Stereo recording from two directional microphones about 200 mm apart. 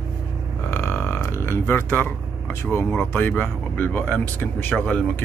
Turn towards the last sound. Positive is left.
turn(degrees=5)  # may be behind; listen again after turning